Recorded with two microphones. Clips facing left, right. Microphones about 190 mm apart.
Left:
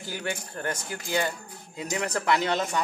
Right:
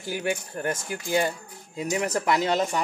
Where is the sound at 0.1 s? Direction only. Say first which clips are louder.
Right 5 dB; 10° right (ahead or behind).